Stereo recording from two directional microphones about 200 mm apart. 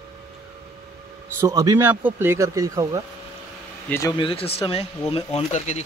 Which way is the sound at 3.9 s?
20° left (ahead or behind).